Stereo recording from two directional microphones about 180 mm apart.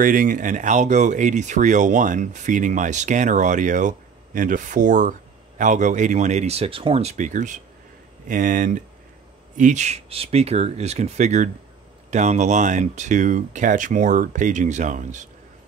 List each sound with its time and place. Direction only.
0.0 s speech: 50° right (ahead or behind)